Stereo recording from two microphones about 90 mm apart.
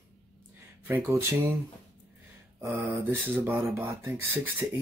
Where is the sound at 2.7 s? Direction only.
20° right (ahead or behind).